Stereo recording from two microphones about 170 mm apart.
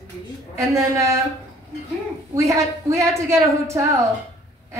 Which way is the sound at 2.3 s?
20° right (ahead or behind).